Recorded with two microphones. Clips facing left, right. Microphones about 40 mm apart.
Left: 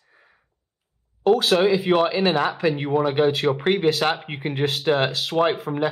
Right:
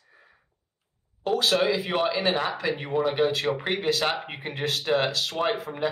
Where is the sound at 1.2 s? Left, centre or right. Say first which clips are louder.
Left 6 dB; centre.